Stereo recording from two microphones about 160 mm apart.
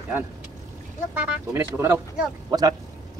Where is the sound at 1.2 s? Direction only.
10° right (ahead or behind).